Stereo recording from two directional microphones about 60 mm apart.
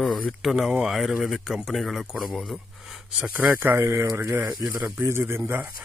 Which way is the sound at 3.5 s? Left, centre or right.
Right.